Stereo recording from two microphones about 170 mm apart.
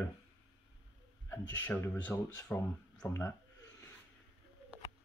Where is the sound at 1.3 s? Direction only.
15° left (ahead or behind).